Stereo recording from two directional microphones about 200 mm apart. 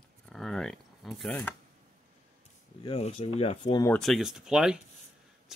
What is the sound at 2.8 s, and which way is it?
Speech, 30° left (ahead or behind).